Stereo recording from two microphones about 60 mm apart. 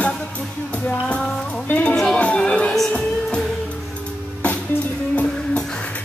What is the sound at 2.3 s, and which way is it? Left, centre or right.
Speech, centre.